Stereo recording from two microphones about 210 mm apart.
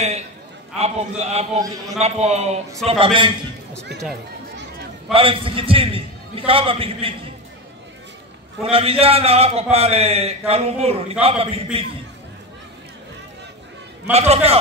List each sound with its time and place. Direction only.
0.7 s a man's voice: 30° right (ahead or behind)
5.1 s a man's voice: 25° right (ahead or behind)
8.6 s a man's voice: 30° right (ahead or behind)
14.1 s a man's voice: 30° right (ahead or behind)